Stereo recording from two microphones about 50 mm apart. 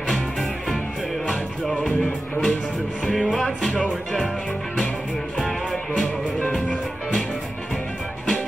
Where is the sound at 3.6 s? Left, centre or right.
Left.